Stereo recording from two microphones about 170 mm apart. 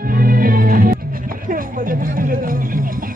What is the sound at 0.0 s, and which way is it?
Music, 55° right (ahead or behind).